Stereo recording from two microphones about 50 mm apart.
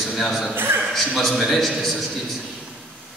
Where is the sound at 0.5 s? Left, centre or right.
Right.